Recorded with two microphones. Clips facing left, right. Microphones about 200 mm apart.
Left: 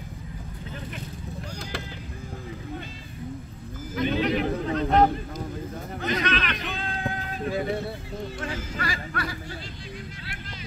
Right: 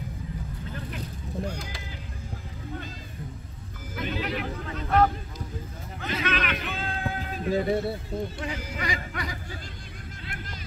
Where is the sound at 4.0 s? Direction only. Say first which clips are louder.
Left 6 dB; 5° right (ahead or behind).